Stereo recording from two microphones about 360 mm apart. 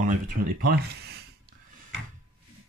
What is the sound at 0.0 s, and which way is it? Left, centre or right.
Speech, right.